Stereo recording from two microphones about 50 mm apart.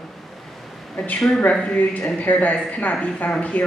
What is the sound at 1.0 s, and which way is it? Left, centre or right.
Speech, left.